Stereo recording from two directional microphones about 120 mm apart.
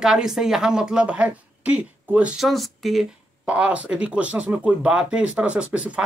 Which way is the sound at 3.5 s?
10° right (ahead or behind).